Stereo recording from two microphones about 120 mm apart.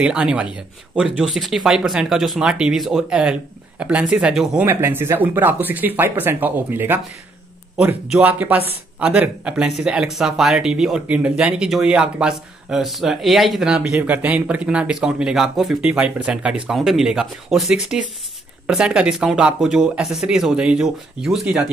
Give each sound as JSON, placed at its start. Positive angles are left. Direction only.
{"t": 0.0, "sound": "speech", "side_deg": -5}
{"t": 4.6, "sound": "speech", "side_deg": -20}